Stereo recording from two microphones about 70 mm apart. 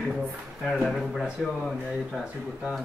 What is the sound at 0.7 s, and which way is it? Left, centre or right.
Speech, centre.